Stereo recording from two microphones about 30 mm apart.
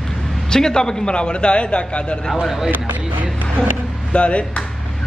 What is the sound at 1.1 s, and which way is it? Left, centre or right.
A man's voice, left.